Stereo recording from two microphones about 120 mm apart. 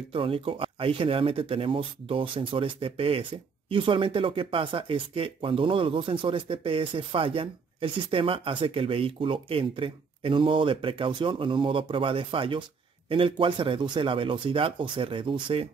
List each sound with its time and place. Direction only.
0.1 s speech: 50° right (ahead or behind)